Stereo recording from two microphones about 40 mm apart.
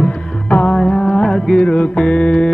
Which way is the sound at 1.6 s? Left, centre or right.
Left.